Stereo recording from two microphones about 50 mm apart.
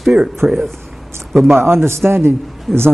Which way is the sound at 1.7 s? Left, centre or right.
Right.